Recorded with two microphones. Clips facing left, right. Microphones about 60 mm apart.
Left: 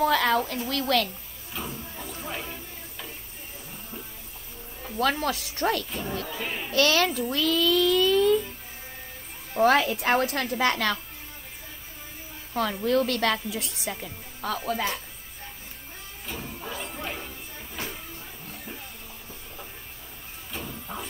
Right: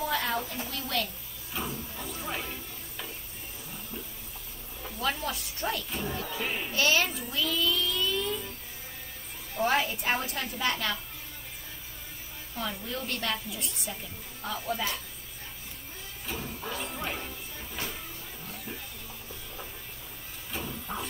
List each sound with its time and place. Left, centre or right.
0.0 s a sound: left
0.5 s a woman's voice: left
1.5 s a sound: centre
5.0 s a woman's voice: left
5.9 s speech: centre
6.7 s a woman's voice: left
9.6 s a woman's voice: left
12.5 s a woman's voice: left
13.8 s a woman's voice: left
16.3 s speech: centre
20.5 s printer: centre